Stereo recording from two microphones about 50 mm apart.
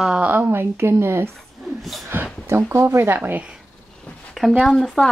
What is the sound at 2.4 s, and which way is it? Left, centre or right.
Speech, right.